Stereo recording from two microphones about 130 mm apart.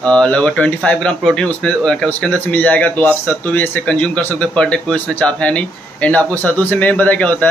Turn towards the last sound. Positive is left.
turn(degrees=10)  # may be behind; listen again after turning